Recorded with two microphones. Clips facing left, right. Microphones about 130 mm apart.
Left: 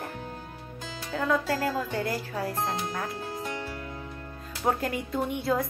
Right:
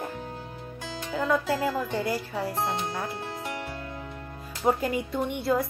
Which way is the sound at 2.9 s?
10° right (ahead or behind).